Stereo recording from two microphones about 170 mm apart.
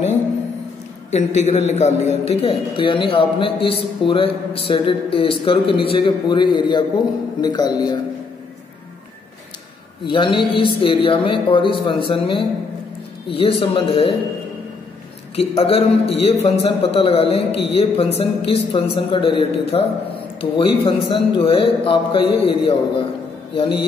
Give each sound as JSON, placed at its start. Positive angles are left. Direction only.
{"t": 1.1, "sound": "a man's voice", "side_deg": 40}
{"t": 10.0, "sound": "a man's voice", "side_deg": 30}
{"t": 15.3, "sound": "a man's voice", "side_deg": 35}